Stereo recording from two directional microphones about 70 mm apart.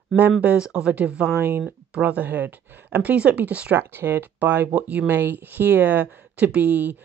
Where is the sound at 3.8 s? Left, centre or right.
Right.